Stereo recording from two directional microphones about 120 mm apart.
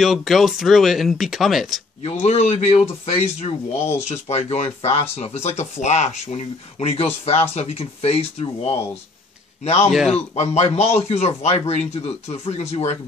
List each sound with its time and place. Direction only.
0.0 s speech: centre (ahead or behind)
2.0 s a man's voice: 70° left (ahead or behind)